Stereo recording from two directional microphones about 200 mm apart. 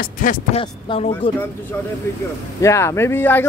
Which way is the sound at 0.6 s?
30° left (ahead or behind).